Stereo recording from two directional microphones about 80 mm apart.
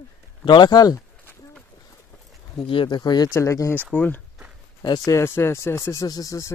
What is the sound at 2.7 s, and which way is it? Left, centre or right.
Speech, left.